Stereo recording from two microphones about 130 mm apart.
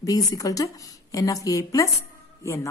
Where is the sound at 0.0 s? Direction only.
30° left (ahead or behind).